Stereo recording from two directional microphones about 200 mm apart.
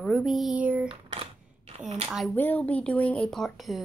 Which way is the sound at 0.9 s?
30° right (ahead or behind).